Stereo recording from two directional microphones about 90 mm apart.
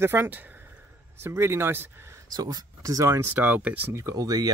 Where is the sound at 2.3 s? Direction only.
45° right (ahead or behind).